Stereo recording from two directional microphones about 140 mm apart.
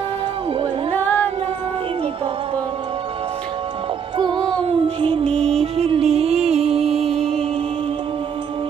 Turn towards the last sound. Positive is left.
turn(degrees=5)  # may be behind; listen again after turning